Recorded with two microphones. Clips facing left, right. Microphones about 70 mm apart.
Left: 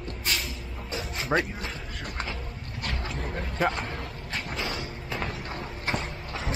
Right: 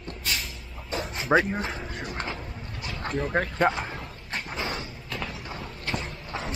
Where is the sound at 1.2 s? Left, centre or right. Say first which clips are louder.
Right 4 dB; centre.